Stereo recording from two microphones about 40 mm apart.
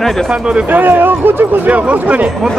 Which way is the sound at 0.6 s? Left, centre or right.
Right.